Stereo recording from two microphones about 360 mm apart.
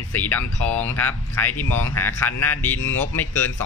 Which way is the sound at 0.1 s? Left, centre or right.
Centre.